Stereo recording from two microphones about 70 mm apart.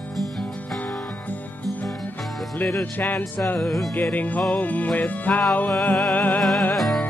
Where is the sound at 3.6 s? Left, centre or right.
Centre.